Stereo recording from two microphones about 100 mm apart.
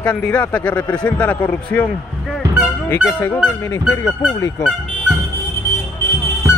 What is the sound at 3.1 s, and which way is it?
Speech, 20° left (ahead or behind).